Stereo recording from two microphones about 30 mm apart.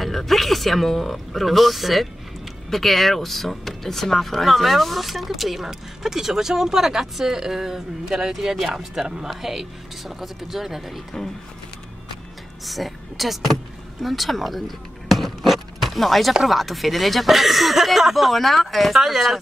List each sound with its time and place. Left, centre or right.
0.0 s speech: centre
9.3 s speech: centre
12.6 s a woman's voice: centre
15.0 s music: centre
16.4 s speech: centre
18.9 s speech: centre